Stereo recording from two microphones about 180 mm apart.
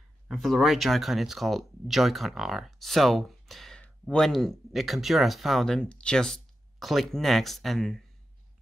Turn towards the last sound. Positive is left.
turn(degrees=0)  # may be behind; listen again after turning